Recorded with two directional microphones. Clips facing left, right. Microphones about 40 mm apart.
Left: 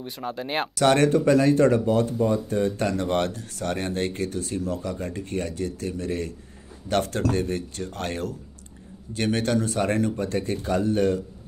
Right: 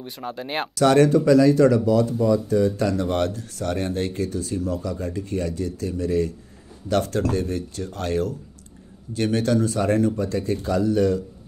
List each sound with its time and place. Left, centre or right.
0.0 s speech: centre
0.7 s speech: left